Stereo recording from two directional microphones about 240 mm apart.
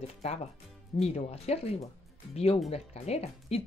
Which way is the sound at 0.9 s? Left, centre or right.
Left.